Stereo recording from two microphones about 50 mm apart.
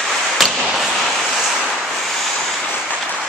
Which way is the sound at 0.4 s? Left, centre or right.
Centre.